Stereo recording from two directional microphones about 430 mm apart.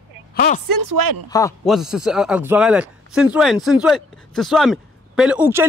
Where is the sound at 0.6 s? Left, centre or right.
Right.